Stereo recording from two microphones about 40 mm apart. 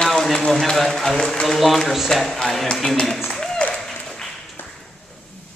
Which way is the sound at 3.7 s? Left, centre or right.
Centre.